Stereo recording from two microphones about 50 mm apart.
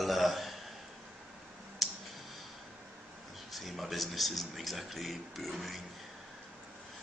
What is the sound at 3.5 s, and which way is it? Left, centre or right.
Speech, centre.